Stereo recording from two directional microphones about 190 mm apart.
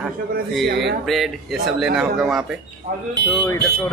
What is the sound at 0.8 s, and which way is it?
Speech, centre (ahead or behind).